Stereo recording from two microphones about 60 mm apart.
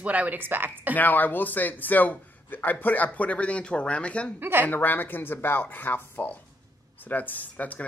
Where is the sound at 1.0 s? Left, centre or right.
Left.